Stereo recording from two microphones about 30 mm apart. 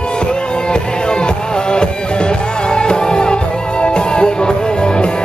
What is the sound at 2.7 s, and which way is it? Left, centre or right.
Music, left.